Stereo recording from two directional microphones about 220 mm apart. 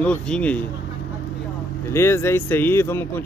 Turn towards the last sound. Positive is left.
turn(degrees=10)  # may be behind; listen again after turning